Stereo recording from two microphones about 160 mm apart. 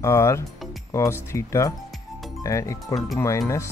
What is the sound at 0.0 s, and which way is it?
Speech, 20° left (ahead or behind).